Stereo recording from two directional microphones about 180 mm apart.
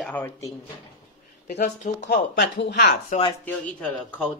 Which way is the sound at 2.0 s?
75° left (ahead or behind).